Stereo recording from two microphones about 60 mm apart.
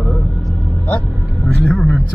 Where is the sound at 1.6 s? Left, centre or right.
Centre.